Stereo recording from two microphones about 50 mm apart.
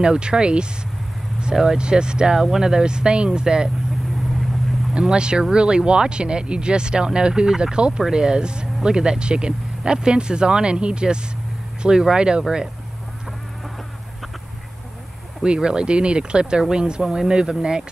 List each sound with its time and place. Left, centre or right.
0.0 s speech: centre
5.0 s speech: centre
15.4 s speech: centre